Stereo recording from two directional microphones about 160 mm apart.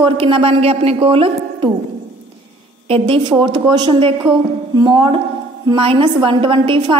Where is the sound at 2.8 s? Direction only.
35° right (ahead or behind).